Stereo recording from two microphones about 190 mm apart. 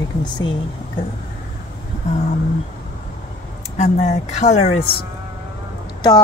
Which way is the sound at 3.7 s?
35° left (ahead or behind).